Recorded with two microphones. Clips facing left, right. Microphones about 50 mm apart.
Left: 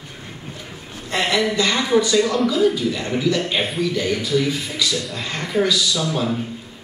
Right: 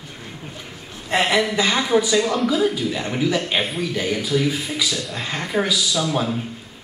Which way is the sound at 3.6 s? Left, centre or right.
Centre.